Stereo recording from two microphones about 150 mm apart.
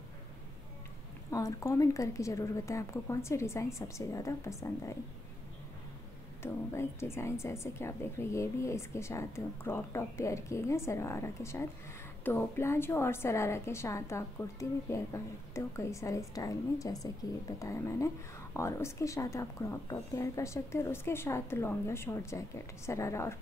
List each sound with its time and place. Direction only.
1.3 s speech: 20° left (ahead or behind)
6.4 s a woman's voice: 15° left (ahead or behind)